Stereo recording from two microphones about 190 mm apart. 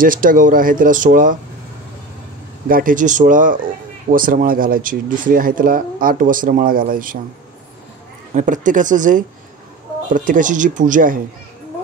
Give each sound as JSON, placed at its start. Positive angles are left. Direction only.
{"t": 0.0, "sound": "speech", "side_deg": -45}
{"t": 2.7, "sound": "speech", "side_deg": -45}
{"t": 8.4, "sound": "speech", "side_deg": -45}